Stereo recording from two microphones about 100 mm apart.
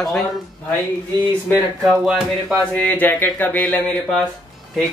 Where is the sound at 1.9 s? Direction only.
10° right (ahead or behind).